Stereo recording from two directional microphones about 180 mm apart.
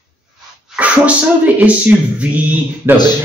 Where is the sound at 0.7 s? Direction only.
10° right (ahead or behind).